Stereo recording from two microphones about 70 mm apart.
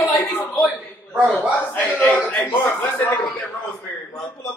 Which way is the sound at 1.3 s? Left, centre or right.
Left.